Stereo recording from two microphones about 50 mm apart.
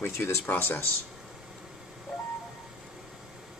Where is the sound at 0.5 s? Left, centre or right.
Left.